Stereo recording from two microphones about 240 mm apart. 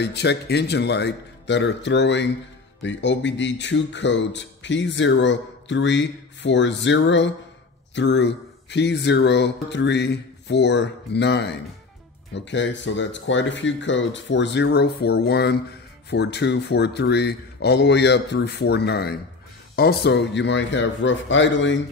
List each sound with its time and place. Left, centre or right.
0.0 s speech: left